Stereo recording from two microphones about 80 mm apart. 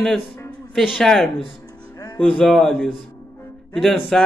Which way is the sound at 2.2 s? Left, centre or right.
Centre.